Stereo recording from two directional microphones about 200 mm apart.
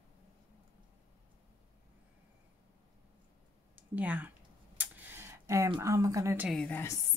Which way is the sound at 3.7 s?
5° right (ahead or behind).